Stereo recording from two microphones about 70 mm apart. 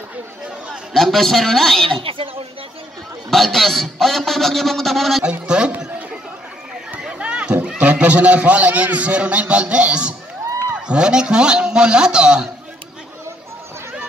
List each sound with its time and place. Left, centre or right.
0.9 s a man's voice: centre
3.3 s a man's voice: centre
5.2 s a man's voice: centre
7.1 s run: centre
7.6 s a man's voice: centre